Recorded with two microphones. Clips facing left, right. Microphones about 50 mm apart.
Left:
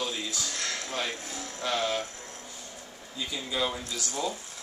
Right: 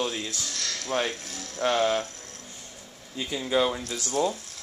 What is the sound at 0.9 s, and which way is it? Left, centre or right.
Speech, right.